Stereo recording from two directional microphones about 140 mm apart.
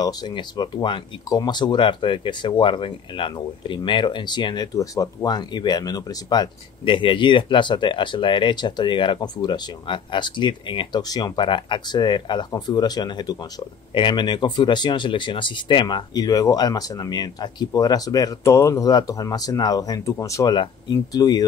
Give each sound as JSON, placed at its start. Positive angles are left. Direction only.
{"t": 0.0, "sound": "speech", "side_deg": 30}